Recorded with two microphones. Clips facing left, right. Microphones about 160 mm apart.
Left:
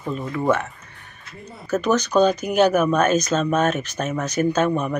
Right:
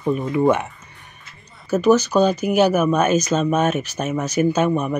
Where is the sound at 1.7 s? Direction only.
10° right (ahead or behind).